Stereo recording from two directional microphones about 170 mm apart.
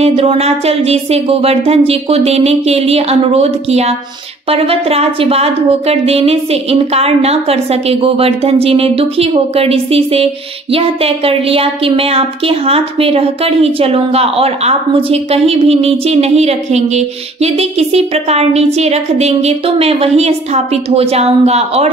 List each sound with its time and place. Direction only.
0.0 s a woman's voice: 35° right (ahead or behind)